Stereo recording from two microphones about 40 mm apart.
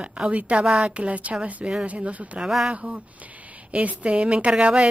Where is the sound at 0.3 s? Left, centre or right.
Right.